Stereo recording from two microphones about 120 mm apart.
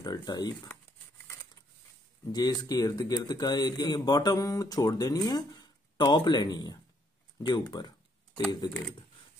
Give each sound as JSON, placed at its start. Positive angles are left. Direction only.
{"t": 0.0, "sound": "speech", "side_deg": 35}
{"t": 2.3, "sound": "a man's voice", "side_deg": 35}